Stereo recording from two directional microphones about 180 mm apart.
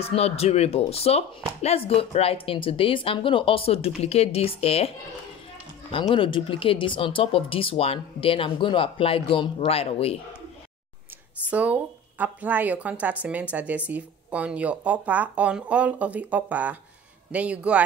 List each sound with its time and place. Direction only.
0.0 s speech: 35° left (ahead or behind)
11.5 s speech: 10° right (ahead or behind)